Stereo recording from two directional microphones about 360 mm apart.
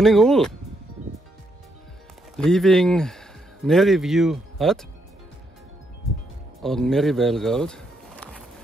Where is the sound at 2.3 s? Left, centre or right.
Centre.